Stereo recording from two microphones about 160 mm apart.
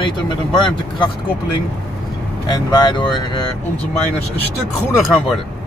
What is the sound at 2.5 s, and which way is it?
Speech, 30° left (ahead or behind).